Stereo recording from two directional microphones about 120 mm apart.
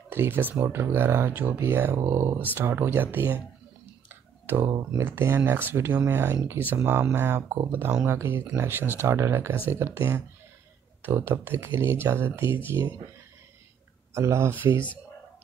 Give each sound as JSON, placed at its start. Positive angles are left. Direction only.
{"t": 0.1, "sound": "speech", "side_deg": -20}
{"t": 4.1, "sound": "clicking", "side_deg": -15}
{"t": 4.9, "sound": "speech", "side_deg": -20}
{"t": 7.7, "sound": "speech", "side_deg": -10}
{"t": 14.1, "sound": "speech", "side_deg": -25}